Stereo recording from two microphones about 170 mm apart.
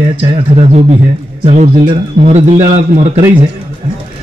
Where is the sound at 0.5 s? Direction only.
40° right (ahead or behind).